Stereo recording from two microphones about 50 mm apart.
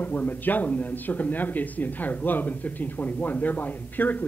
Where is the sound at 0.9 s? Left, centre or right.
Left.